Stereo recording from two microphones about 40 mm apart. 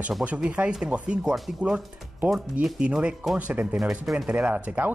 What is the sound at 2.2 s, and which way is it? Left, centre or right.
Speech, centre.